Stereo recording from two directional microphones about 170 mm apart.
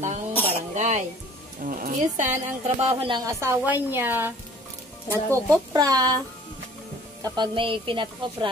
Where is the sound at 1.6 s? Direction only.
55° right (ahead or behind).